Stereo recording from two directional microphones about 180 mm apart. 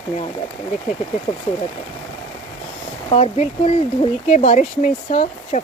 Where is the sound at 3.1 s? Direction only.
35° left (ahead or behind).